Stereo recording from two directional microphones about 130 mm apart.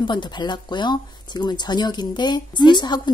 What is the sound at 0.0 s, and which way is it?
Speech, 35° left (ahead or behind).